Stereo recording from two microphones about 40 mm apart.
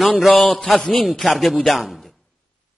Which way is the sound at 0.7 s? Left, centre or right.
Centre.